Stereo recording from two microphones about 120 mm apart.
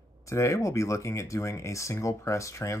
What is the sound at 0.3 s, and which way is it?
Speech, 25° left (ahead or behind).